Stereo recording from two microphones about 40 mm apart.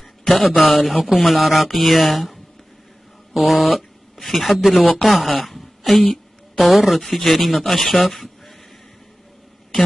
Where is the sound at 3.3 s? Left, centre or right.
Centre.